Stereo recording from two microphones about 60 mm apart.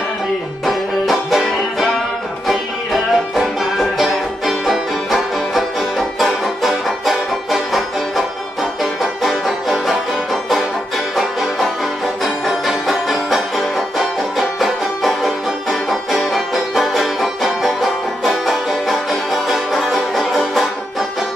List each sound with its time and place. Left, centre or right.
0.7 s music: centre
9.0 s music: centre
12.2 s music: centre